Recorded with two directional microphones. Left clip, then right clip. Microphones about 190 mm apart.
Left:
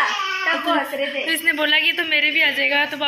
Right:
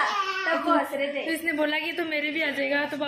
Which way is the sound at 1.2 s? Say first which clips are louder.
Left 7 dB; 5° right (ahead or behind).